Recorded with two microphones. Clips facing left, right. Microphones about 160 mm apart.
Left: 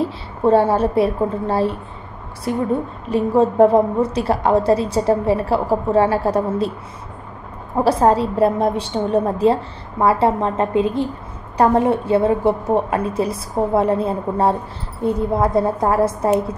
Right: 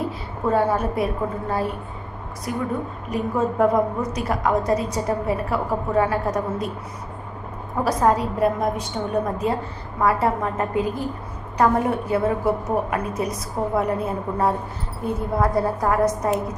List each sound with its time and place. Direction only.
0.0 s a woman's voice: 30° left (ahead or behind)
7.7 s a woman's voice: 30° left (ahead or behind)